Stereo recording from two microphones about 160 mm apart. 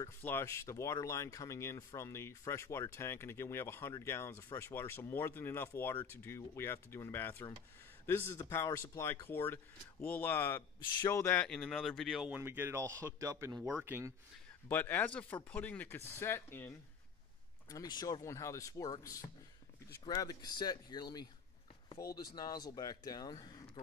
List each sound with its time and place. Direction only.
0.0 s speech: 15° left (ahead or behind)
12.4 s speech: 15° right (ahead or behind)
14.7 s speech: 10° left (ahead or behind)